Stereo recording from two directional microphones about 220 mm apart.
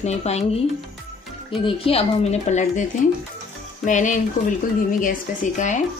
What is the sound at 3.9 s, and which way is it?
Speech, 35° left (ahead or behind).